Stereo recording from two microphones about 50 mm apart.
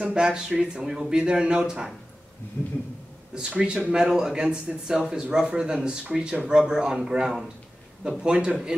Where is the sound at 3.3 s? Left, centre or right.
Centre.